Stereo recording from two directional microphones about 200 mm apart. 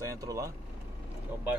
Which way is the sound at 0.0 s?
15° right (ahead or behind).